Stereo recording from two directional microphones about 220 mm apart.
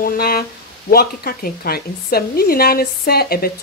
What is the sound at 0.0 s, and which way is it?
Speech, 45° left (ahead or behind).